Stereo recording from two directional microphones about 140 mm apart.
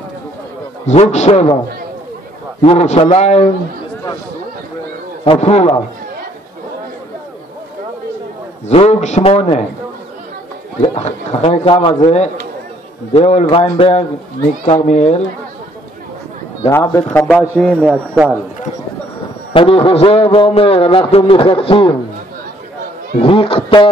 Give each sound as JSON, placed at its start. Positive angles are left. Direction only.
{"t": 0.8, "sound": "speech", "side_deg": 55}
{"t": 2.6, "sound": "speech", "side_deg": 50}
{"t": 5.2, "sound": "speech", "side_deg": 45}
{"t": 8.6, "sound": "speech", "side_deg": 50}
{"t": 10.8, "sound": "speech", "side_deg": 50}
{"t": 13.1, "sound": "speech", "side_deg": 50}
{"t": 16.6, "sound": "speech", "side_deg": 25}
{"t": 17.2, "sound": "a man's voice", "side_deg": 5}
{"t": 19.5, "sound": "speech", "side_deg": 40}
{"t": 23.1, "sound": "speech", "side_deg": 40}